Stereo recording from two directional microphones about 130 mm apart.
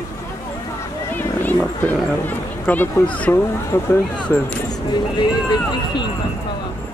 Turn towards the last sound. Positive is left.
turn(degrees=35)  # may be behind; listen again after turning